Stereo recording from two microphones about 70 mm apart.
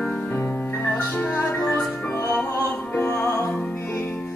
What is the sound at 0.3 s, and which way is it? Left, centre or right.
Music, left.